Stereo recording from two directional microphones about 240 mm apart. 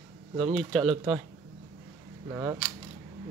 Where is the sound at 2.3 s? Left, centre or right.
Centre.